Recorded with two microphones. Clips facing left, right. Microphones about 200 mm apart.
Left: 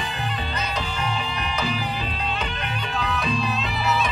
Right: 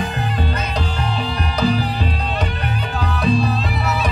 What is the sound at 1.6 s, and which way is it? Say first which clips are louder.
Music: right 10 dB; 40° right (ahead or behind).